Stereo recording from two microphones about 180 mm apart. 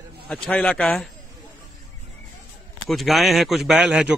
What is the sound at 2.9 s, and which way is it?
Speech, centre (ahead or behind).